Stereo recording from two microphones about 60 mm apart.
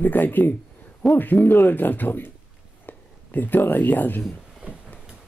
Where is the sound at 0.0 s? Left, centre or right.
Left.